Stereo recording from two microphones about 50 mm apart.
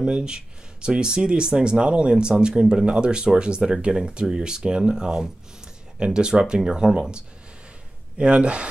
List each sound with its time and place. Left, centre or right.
0.0 s speech: centre